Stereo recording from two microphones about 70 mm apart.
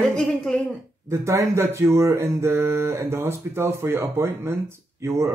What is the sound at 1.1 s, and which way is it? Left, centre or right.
Speech, right.